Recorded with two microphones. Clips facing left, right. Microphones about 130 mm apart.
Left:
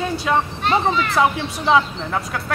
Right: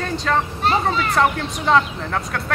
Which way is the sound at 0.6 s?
35° right (ahead or behind).